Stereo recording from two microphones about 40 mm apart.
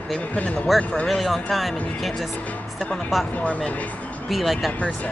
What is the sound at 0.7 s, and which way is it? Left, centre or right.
Speech, centre.